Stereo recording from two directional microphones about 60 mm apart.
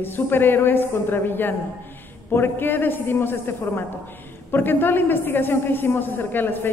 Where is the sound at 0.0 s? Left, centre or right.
Left.